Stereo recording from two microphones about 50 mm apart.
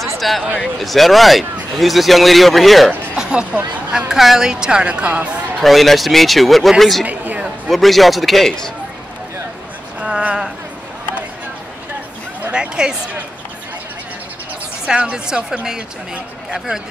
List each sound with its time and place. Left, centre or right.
0.2 s speech: centre
3.2 s a sound: centre
4.1 s a woman's voice: centre; by 5.4 s right
5.6 s speech: centre
7.1 s a sound: right
7.6 s speech: centre
9.9 s a sound: right
12.5 s a woman's voice: centre
14.9 s a woman's voice: centre